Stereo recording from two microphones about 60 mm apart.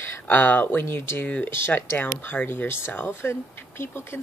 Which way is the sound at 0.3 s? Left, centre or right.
Left.